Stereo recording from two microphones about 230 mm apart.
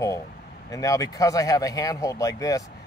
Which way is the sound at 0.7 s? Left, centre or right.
Centre.